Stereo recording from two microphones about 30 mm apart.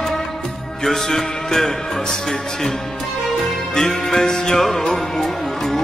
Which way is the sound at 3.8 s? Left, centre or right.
Centre.